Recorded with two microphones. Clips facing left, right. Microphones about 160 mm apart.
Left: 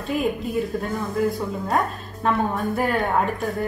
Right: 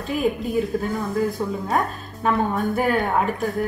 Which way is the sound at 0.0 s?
Centre (ahead or behind).